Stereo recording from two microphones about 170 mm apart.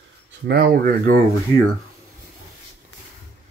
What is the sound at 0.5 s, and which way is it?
Speech, 65° right (ahead or behind).